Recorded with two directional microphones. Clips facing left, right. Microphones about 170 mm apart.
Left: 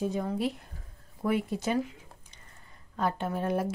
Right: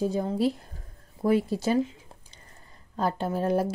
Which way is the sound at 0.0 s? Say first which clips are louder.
Right 4 dB; 30° right (ahead or behind).